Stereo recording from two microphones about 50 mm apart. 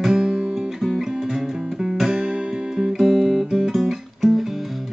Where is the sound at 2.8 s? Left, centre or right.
Centre.